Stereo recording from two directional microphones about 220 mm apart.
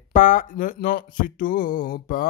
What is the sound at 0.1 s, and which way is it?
Speech, 35° left (ahead or behind).